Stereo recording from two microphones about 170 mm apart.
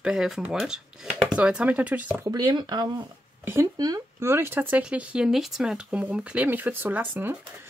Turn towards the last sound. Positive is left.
turn(degrees=-10)  # may be behind; listen again after turning